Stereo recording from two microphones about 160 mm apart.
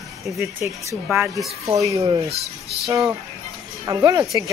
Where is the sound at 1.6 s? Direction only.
20° right (ahead or behind).